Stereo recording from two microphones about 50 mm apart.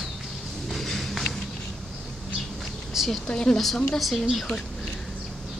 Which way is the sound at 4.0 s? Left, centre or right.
Centre.